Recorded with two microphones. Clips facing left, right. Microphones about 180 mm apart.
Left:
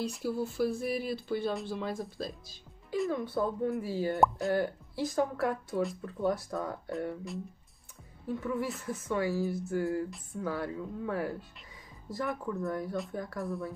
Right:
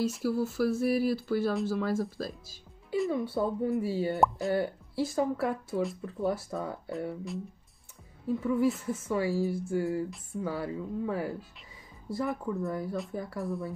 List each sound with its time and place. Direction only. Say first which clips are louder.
0.0 s speech: right 4 dB; 5° right (ahead or behind)